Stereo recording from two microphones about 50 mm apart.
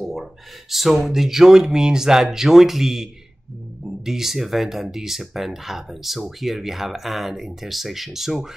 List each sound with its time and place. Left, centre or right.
0.0 s speech: centre